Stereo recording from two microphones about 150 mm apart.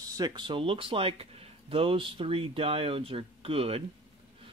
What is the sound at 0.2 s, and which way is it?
Speech, 30° right (ahead or behind).